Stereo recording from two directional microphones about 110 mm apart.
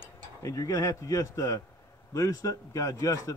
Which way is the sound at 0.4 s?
30° left (ahead or behind).